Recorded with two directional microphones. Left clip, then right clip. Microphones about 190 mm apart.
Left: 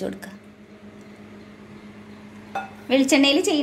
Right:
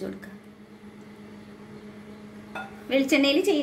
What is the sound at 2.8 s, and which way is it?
Speech, 40° left (ahead or behind).